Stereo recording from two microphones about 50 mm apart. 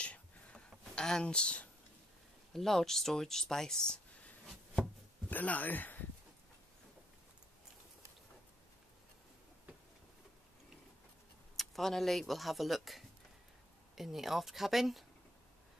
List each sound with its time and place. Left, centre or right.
0.0 s a sound: left
1.2 s speech: left
2.5 s speech: centre
5.3 s speech: left
11.5 s speech: centre